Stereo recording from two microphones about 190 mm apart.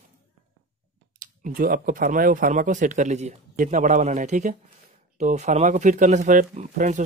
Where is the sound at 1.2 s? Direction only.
45° right (ahead or behind).